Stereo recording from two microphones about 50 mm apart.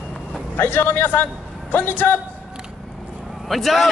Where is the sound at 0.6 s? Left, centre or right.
Left.